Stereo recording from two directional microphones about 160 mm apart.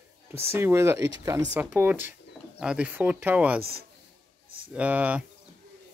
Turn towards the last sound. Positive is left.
turn(degrees=-10)  # may be behind; listen again after turning